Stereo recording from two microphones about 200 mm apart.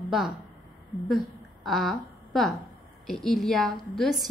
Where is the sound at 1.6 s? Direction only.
Centre (ahead or behind).